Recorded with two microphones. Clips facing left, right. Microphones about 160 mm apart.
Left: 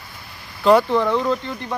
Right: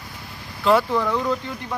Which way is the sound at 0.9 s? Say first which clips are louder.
Left 3 dB; 20° left (ahead or behind).